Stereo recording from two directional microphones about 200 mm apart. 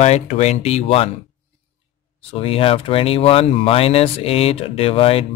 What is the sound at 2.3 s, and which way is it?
Speech, 30° left (ahead or behind).